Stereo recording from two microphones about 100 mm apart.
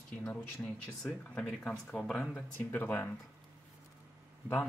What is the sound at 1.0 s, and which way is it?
Speech, 5° left (ahead or behind).